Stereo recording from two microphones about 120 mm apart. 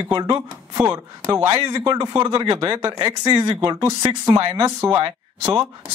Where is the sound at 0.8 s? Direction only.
25° right (ahead or behind).